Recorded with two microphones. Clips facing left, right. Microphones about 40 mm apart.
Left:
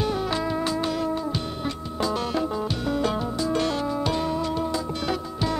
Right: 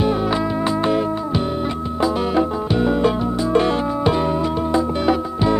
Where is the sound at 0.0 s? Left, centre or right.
Centre.